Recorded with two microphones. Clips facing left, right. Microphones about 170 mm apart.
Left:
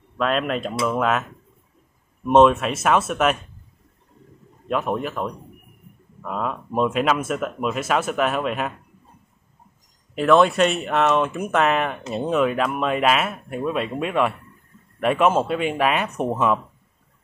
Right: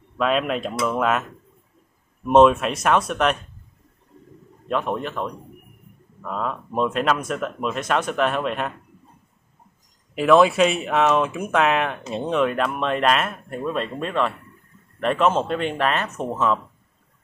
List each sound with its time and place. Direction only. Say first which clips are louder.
0.2 s speech: right 1 dB; centre (ahead or behind)
2.2 s speech: even; centre (ahead or behind)
4.6 s speech: left 1 dB; 5° left (ahead or behind)
10.1 s speech: right 1 dB; centre (ahead or behind); by 16.5 s 15° left (ahead or behind)